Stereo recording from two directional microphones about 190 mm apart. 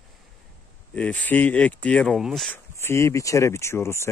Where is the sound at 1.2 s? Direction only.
10° left (ahead or behind).